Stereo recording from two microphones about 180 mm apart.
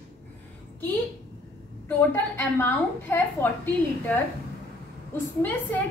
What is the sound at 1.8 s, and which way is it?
A woman's voice, 10° left (ahead or behind).